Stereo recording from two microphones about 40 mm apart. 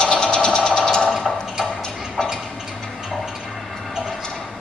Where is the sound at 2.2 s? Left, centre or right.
Centre.